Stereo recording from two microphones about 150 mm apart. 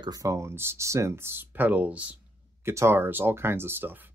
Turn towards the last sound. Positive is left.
turn(degrees=-15)  # may be behind; listen again after turning